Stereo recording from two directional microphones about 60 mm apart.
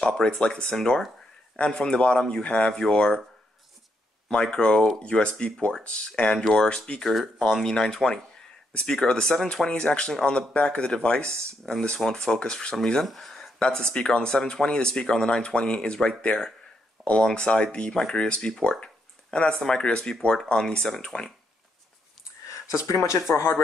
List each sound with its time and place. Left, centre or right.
0.0 s speech: centre
4.3 s speech: centre
13.6 s speech: centre
23.3 s speech: left